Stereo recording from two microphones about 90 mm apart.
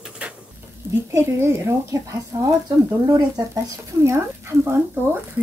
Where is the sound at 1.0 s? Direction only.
30° right (ahead or behind).